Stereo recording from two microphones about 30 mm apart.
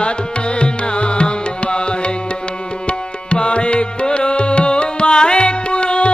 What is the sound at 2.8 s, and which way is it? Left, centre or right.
Tabla, left.